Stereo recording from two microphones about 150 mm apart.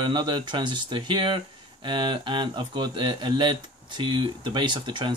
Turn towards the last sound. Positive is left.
turn(degrees=-30)  # may be behind; listen again after turning